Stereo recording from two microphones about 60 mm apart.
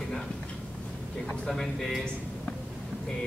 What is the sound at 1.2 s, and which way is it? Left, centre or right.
Speech, centre.